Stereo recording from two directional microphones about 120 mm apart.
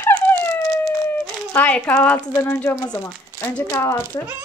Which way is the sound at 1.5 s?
15° left (ahead or behind).